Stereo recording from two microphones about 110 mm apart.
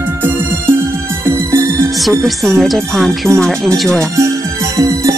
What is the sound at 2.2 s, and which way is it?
Speech, centre (ahead or behind).